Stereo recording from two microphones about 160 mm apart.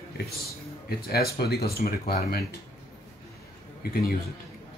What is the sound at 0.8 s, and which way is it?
Speech, 75° left (ahead or behind).